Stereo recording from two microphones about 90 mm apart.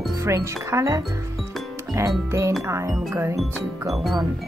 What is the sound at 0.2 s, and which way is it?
Speech, 35° right (ahead or behind).